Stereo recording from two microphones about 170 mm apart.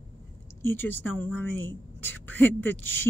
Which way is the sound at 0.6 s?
10° left (ahead or behind).